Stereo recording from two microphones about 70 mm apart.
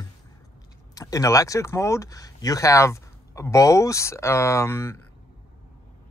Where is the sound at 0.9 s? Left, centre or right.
Left.